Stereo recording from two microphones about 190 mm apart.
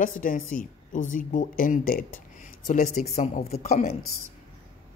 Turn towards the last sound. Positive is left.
turn(degrees=35)  # may be behind; listen again after turning